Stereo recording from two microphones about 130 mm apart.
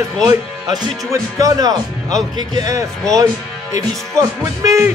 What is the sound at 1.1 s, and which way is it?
Speech, 25° right (ahead or behind).